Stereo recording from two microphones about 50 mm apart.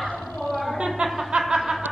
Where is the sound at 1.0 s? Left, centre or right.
Centre.